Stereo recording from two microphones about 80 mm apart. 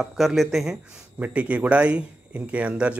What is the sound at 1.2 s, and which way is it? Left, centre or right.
A man's voice, centre.